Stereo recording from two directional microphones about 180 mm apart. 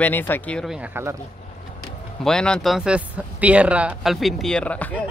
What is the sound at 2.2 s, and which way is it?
Speech, 5° left (ahead or behind).